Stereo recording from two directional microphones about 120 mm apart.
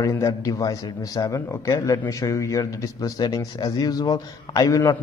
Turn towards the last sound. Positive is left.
turn(degrees=30)  # may be behind; listen again after turning